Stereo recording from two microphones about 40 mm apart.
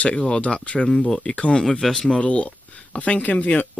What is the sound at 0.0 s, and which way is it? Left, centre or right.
Speech, left.